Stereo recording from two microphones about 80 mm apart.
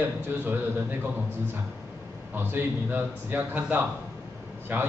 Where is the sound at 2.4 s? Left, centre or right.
Right.